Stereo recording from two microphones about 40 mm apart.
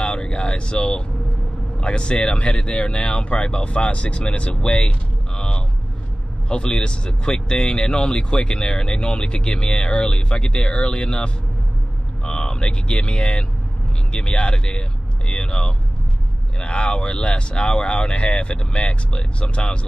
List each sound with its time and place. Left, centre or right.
0.0 s a sound: left
1.8 s speech: left
4.6 s vehicle: left
6.5 s speech: left